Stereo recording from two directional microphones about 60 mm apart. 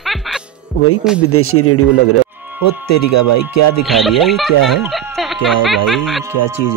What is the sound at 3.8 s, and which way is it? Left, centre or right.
Speech, centre.